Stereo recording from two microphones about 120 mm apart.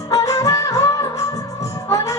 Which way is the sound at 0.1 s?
25° left (ahead or behind).